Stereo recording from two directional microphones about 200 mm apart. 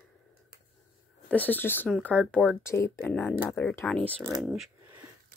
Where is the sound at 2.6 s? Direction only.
15° left (ahead or behind).